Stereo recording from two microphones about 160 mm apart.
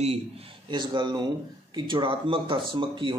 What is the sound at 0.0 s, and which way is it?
Speech, 40° right (ahead or behind).